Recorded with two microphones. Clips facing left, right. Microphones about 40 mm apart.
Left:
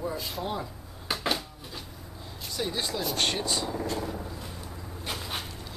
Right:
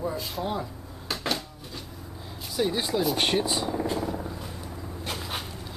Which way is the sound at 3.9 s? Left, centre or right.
Centre.